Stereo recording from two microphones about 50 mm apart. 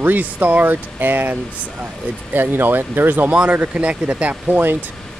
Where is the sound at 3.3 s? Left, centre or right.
Right.